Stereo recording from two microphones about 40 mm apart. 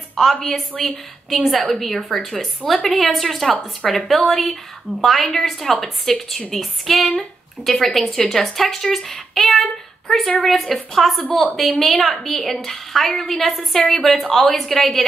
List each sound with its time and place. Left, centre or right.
0.1 s a woman's voice: centre